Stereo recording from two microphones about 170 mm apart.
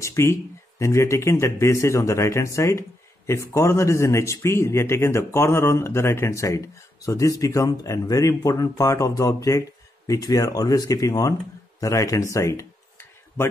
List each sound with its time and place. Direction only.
0.0 s speech: 15° left (ahead or behind)